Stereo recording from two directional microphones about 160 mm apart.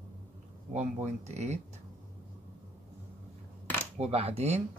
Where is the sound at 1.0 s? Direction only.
45° right (ahead or behind).